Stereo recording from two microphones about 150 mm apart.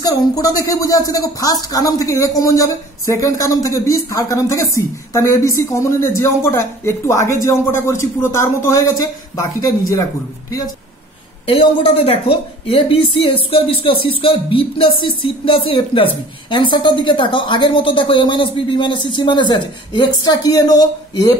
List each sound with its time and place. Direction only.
0.0 s speech: 25° left (ahead or behind)
11.4 s a woman's voice: 40° left (ahead or behind)